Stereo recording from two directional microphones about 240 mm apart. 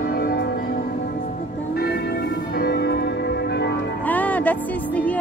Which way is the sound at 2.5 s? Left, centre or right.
Left.